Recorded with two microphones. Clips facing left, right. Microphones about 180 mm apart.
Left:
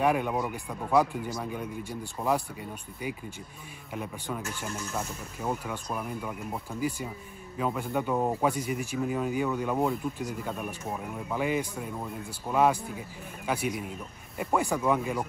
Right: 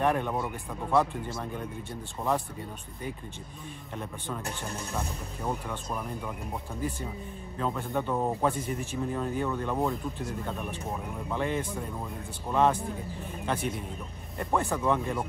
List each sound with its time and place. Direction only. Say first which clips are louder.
0.0 s speech: left 1 dB; 10° left (ahead or behind)
3.9 s speech: left 2 dB; 5° left (ahead or behind)
4.4 s speech: even; 35° right (ahead or behind)
5.4 s speech: left 1 dB; 5° left (ahead or behind)
11.2 s speech: left 2 dB; 5° left (ahead or behind)